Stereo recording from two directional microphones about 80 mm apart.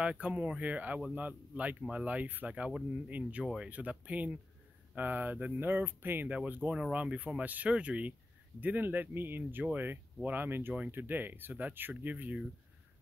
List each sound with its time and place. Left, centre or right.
0.0 s speech: centre